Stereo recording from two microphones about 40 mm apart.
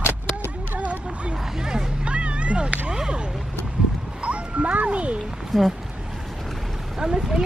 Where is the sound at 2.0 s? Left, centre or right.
Right.